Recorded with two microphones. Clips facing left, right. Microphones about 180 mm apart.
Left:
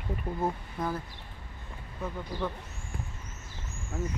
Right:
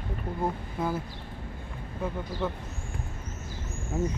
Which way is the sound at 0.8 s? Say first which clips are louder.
Right 3 dB; 5° right (ahead or behind).